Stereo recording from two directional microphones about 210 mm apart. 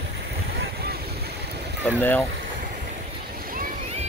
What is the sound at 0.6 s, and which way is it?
Vehicle, 50° right (ahead or behind).